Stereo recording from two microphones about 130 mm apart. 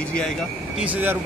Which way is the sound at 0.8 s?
15° right (ahead or behind).